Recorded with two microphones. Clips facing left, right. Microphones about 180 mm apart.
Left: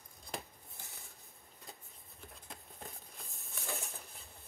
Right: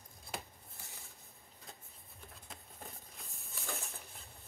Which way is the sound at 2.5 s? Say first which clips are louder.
Left 1 dB; centre (ahead or behind).